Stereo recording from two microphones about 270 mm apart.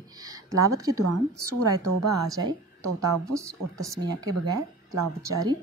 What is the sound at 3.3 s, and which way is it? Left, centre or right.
Speech, centre.